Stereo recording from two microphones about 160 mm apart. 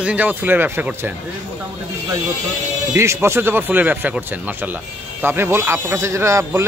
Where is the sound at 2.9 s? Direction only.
15° right (ahead or behind).